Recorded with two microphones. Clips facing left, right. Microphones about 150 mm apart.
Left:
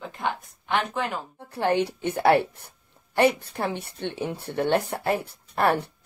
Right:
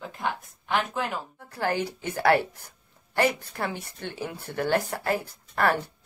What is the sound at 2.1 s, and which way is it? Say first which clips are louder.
Speech: left 2 dB; 20° left (ahead or behind).